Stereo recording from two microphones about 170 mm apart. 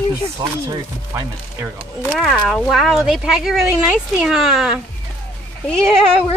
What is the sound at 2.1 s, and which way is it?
Speech, centre (ahead or behind).